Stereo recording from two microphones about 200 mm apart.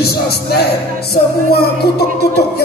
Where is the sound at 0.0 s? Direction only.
55° left (ahead or behind).